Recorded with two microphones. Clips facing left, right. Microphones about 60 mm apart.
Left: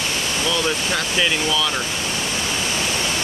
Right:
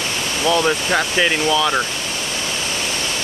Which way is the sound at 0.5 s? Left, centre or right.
Right.